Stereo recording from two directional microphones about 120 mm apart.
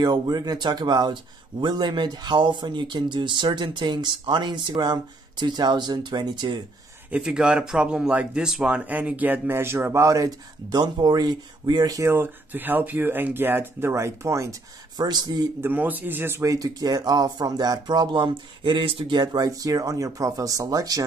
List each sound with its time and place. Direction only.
0.0 s speech: 35° right (ahead or behind)
7.1 s speech: 5° right (ahead or behind); by 14.5 s 25° right (ahead or behind)
15.0 s speech: 35° right (ahead or behind)
15.6 s speech: 15° right (ahead or behind); by 21.0 s 30° right (ahead or behind)